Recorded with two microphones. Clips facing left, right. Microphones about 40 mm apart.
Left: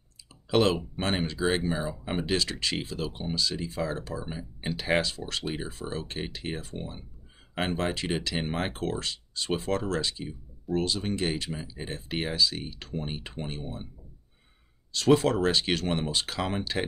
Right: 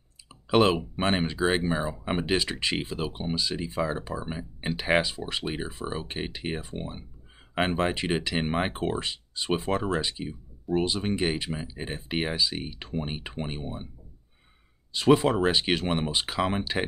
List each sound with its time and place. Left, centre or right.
0.5 s speech: centre
14.9 s speech: centre